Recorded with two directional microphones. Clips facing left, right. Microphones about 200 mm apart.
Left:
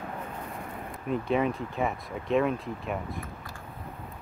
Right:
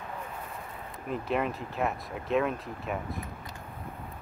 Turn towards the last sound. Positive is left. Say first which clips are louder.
# left 1 dB
turn(degrees=0)  # may be behind; listen again after turning